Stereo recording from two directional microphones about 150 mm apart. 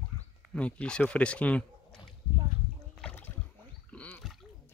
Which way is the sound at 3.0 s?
10° left (ahead or behind).